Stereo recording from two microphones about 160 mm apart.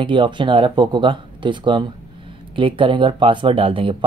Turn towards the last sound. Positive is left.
turn(degrees=-35)  # may be behind; listen again after turning